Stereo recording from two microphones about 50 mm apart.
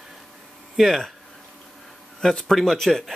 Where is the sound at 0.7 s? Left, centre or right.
Centre.